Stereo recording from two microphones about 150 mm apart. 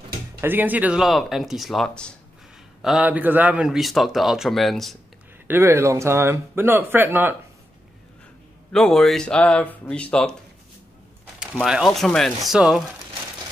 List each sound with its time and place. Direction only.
0.4 s a man's voice: 15° right (ahead or behind)
5.5 s speech: 15° right (ahead or behind)
8.7 s a man's voice: 5° left (ahead or behind)
11.3 s a man's voice: 5° right (ahead or behind)